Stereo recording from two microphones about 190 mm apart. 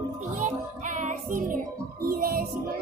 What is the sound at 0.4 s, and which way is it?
Music, 40° right (ahead or behind).